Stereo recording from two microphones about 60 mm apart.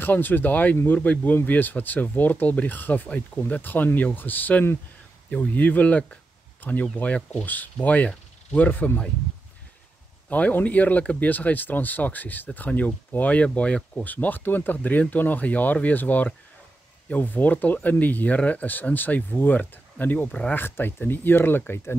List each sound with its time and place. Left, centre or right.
0.0 s speech: left
10.3 s speech: left
14.0 s speech: left